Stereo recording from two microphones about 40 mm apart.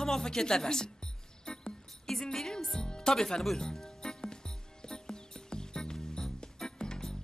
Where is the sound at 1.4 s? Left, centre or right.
Centre.